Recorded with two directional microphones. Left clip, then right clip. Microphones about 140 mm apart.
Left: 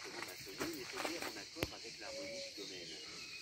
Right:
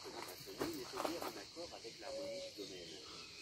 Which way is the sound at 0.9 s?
5° left (ahead or behind).